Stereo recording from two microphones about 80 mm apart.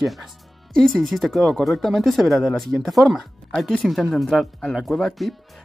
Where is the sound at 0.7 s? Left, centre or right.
Centre.